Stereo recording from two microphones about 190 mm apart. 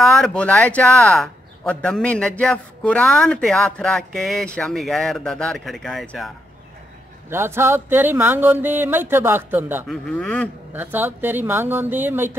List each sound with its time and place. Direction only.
0.0 s speech: 5° left (ahead or behind)
7.2 s speech: 10° right (ahead or behind)
9.8 s speech: 5° left (ahead or behind)
10.7 s speech: 10° right (ahead or behind)